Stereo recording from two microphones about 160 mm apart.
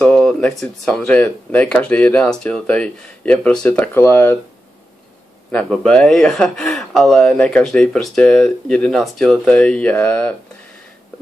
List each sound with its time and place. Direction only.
0.0 s speech: 5° left (ahead or behind)
5.5 s speech: 5° left (ahead or behind)